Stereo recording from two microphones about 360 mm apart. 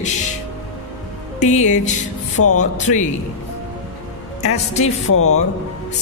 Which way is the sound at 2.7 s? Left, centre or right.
Centre.